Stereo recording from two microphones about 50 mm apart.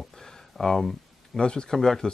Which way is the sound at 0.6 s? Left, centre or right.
Centre.